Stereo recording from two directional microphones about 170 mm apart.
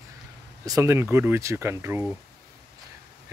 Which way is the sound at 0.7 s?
20° right (ahead or behind).